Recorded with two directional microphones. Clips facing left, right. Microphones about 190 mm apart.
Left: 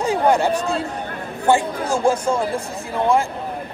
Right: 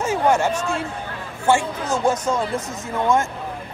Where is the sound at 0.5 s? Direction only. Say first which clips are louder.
Left 3 dB; 35° left (ahead or behind).